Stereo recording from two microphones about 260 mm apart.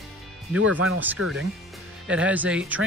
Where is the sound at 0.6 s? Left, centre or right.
Right.